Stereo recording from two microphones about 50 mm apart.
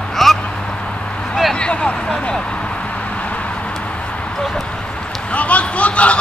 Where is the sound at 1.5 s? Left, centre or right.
Left.